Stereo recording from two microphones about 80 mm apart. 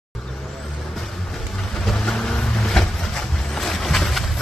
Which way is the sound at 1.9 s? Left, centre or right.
Centre.